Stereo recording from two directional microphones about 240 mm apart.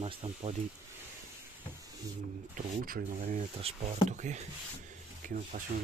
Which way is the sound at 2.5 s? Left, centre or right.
Right.